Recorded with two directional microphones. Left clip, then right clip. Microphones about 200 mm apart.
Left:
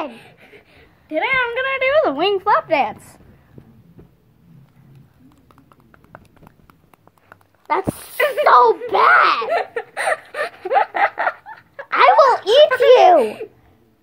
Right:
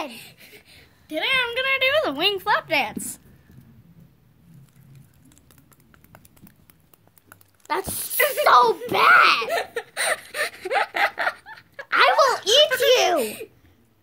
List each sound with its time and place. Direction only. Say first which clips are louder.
0.1 s a child's voice: left 1 dB; 20° right (ahead or behind); by 3.2 s 35° right (ahead or behind)
7.6 s speech: left 6 dB; 35° right (ahead or behind)
8.7 s giggle: left 3 dB; 35° right (ahead or behind); by 11.9 s 15° right (ahead or behind)
11.9 s a child's voice: left 6 dB; 30° right (ahead or behind)